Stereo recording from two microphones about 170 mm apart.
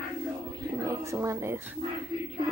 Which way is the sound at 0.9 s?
15° right (ahead or behind).